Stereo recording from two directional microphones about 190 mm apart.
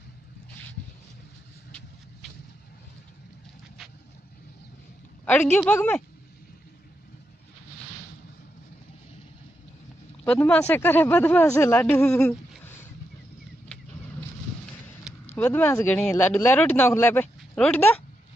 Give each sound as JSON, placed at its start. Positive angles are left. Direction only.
{"t": 5.2, "sound": "speech", "side_deg": 10}
{"t": 10.2, "sound": "speech", "side_deg": 5}
{"t": 15.3, "sound": "speech", "side_deg": 10}